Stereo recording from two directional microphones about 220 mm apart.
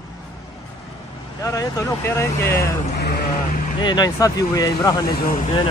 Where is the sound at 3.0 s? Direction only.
45° left (ahead or behind).